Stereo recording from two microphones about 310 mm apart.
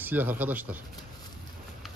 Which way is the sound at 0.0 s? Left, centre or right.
Centre.